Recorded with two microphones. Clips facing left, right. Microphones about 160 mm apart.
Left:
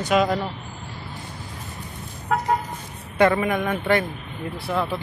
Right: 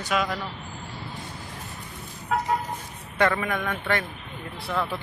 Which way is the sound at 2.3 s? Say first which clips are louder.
Left 2 dB; 55° left (ahead or behind).